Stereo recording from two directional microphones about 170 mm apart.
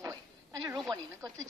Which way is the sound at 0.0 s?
20° right (ahead or behind).